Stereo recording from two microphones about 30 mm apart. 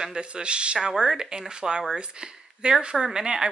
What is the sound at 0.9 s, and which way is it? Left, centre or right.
Speech, right.